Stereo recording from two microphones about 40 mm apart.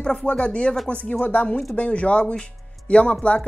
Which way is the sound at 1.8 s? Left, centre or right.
Left.